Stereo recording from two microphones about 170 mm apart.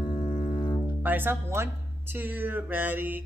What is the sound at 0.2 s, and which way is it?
Music, 50° left (ahead or behind).